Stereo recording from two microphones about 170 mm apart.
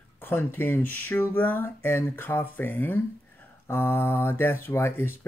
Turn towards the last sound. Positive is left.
turn(degrees=15)  # may be behind; listen again after turning